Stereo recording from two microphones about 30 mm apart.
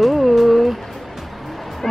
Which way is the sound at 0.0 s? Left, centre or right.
Centre.